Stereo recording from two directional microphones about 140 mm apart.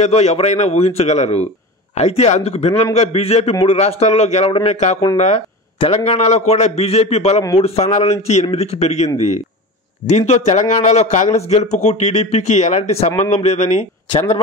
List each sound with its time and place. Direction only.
0.0 s speech: 50° left (ahead or behind)